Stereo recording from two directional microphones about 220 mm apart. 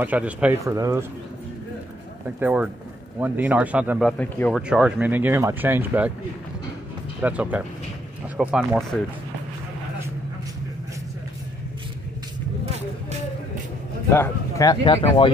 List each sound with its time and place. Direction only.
0.0 s speech: 5° right (ahead or behind)
2.4 s speech: 5° right (ahead or behind)
4.2 s speech: 5° left (ahead or behind)
4.6 s speech: 5° right (ahead or behind)
7.2 s speech: 5° right (ahead or behind)
14.1 s speech: 10° left (ahead or behind)